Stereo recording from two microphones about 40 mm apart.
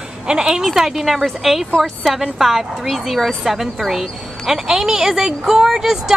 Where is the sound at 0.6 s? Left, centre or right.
Centre.